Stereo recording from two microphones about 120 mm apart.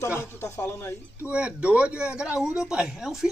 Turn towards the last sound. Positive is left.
turn(degrees=-5)  # may be behind; listen again after turning